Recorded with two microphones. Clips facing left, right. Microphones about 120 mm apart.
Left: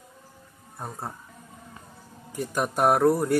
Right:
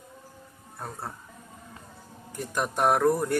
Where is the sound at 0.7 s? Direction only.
15° left (ahead or behind).